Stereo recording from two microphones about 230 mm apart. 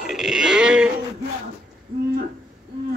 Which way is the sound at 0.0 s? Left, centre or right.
Centre.